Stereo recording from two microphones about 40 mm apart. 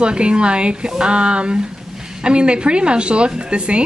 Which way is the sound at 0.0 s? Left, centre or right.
Right.